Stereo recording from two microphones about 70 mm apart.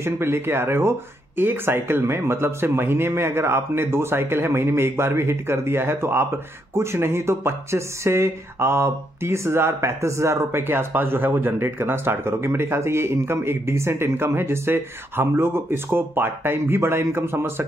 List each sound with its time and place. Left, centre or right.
0.0 s speech: right